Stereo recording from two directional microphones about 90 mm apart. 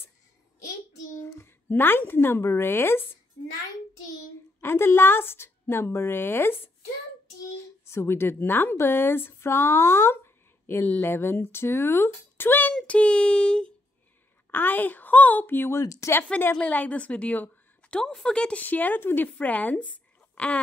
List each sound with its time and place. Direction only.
1.4 s a woman's voice: 25° left (ahead or behind)
4.6 s a woman's voice: 25° left (ahead or behind)
7.6 s a woman's voice: 30° left (ahead or behind)
12.7 s a woman's voice: 10° left (ahead or behind); by 16.2 s 35° left (ahead or behind)
16.3 s a woman's voice: 20° left (ahead or behind)